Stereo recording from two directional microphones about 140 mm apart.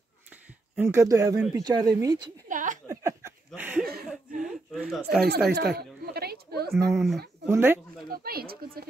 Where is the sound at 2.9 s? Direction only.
20° right (ahead or behind).